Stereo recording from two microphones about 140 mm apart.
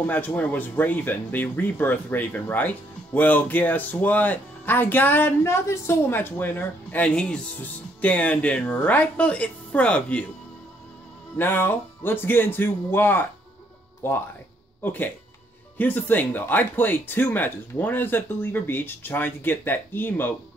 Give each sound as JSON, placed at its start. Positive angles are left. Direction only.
{"t": 0.0, "sound": "speech", "side_deg": 10}
{"t": 11.3, "sound": "speech", "side_deg": 15}